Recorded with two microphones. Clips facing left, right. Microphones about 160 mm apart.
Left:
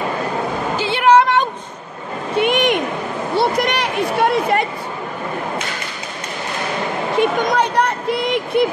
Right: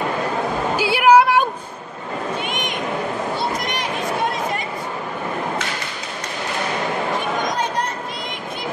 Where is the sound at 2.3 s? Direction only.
65° left (ahead or behind).